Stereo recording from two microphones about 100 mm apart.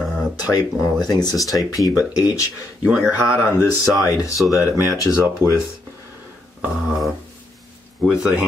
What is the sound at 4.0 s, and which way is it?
Speech, 35° left (ahead or behind).